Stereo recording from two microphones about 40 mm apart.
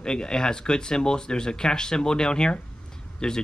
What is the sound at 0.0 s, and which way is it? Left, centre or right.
Speech, centre.